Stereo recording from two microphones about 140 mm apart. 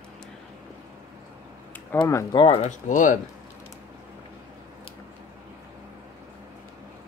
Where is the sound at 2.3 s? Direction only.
40° left (ahead or behind).